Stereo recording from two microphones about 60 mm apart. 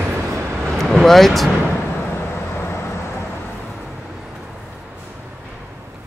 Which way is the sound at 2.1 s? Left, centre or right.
Left.